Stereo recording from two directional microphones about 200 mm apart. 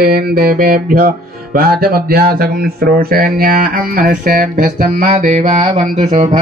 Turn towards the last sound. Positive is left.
turn(degrees=-35)  # may be behind; listen again after turning